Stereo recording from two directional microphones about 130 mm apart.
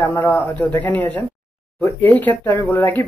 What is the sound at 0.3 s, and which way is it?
Speech, 10° left (ahead or behind).